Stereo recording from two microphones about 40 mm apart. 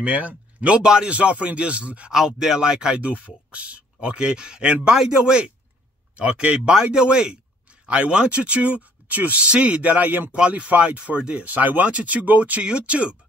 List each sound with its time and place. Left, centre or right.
0.0 s speech: right
2.0 s speech: centre
3.0 s speech: right
6.7 s speech: centre; by 9.4 s right
9.4 s speech: right
10.8 s speech: right
11.4 s speech: right